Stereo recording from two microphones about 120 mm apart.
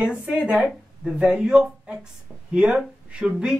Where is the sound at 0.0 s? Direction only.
10° right (ahead or behind).